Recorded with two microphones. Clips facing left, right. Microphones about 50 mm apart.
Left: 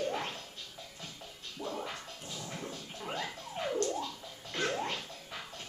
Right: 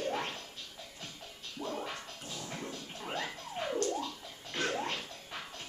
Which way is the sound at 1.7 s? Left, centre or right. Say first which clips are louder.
Right 1 dB; centre.